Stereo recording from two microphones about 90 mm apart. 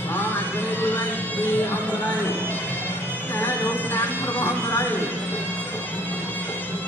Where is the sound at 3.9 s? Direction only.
20° left (ahead or behind).